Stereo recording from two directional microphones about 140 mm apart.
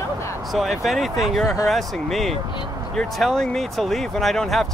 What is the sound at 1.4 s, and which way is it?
Speech, 20° left (ahead or behind).